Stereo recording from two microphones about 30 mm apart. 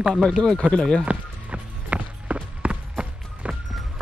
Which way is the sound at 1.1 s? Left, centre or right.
Right.